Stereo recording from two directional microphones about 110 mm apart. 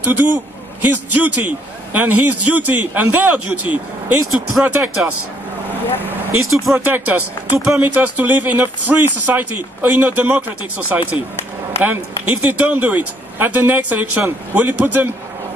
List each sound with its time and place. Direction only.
0.0 s speech: 15° right (ahead or behind)
6.5 s speech: centre (ahead or behind)
6.9 s speech: 15° right (ahead or behind)
11.8 s speech: 15° right (ahead or behind)